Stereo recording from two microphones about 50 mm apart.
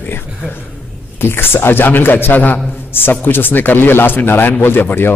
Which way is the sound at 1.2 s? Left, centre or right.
Left.